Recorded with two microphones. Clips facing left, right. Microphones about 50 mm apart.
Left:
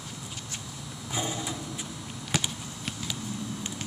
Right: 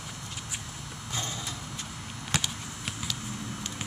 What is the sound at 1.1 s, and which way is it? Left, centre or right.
Vehicle, centre.